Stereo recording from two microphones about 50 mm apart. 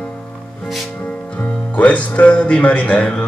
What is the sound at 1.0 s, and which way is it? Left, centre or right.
Speech, left.